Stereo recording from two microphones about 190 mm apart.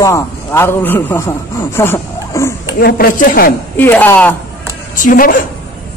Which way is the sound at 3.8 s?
10° left (ahead or behind).